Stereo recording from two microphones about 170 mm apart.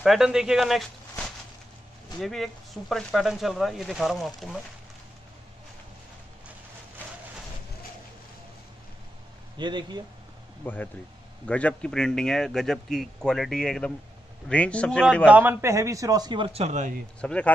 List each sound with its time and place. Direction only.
0.0 s a man's voice: 5° right (ahead or behind)
9.6 s a man's voice: 25° right (ahead or behind)
10.6 s a man's voice: 10° left (ahead or behind)
15.2 s a man's voice: 10° right (ahead or behind); by 17.0 s 45° right (ahead or behind)
17.2 s a man's voice: 5° left (ahead or behind)